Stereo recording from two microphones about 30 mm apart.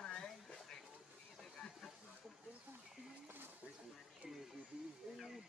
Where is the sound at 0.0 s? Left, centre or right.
Left.